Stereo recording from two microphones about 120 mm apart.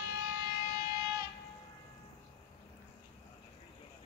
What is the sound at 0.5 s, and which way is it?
Civil defense siren, 35° right (ahead or behind).